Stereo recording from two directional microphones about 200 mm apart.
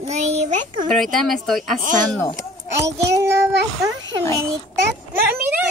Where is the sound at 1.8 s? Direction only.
40° right (ahead or behind).